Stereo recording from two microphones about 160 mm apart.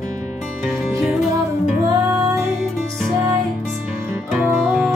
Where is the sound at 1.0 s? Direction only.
Centre (ahead or behind).